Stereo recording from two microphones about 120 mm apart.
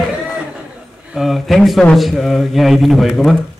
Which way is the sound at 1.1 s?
Centre (ahead or behind).